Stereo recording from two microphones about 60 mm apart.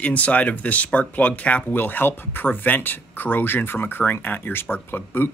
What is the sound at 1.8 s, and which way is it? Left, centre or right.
Speech, left.